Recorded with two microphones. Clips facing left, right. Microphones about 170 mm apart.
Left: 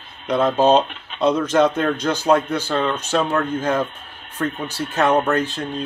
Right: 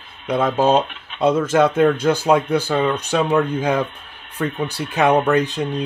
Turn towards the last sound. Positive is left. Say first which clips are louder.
# right 3 dB
turn(degrees=-15)  # may be behind; listen again after turning